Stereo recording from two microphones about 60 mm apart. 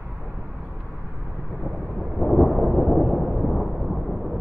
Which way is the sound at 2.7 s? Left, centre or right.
Centre.